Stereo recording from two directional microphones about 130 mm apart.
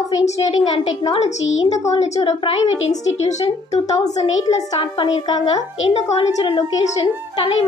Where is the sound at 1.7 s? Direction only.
60° left (ahead or behind).